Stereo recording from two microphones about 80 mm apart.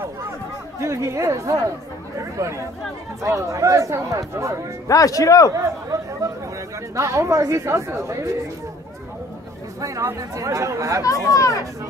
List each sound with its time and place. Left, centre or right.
0.7 s speech: right
4.8 s speech: left
5.5 s speech: right
9.8 s speech: right
11.1 s speech: left